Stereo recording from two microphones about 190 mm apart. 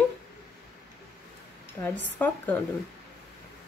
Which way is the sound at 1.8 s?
10° left (ahead or behind).